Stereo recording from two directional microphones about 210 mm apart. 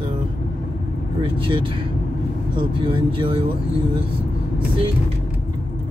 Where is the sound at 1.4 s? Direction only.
25° right (ahead or behind).